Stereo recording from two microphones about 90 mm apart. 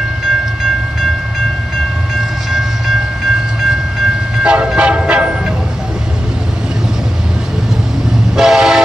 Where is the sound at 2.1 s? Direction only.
5° right (ahead or behind).